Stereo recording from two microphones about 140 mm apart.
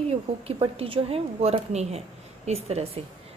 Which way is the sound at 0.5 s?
40° right (ahead or behind).